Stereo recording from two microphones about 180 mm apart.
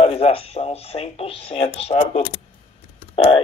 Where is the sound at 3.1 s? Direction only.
30° left (ahead or behind).